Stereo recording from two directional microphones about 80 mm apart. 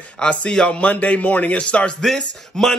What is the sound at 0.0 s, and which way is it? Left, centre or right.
A man's voice, centre.